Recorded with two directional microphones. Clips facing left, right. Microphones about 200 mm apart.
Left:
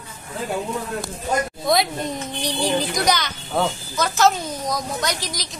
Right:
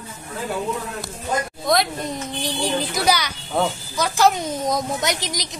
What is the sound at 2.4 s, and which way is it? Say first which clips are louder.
A woman's voice: left 2 dB; centre (ahead or behind).